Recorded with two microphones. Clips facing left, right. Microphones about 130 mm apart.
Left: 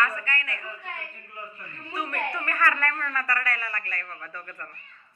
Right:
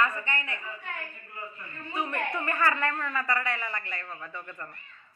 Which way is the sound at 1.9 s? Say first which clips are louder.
Even; 20° right (ahead or behind).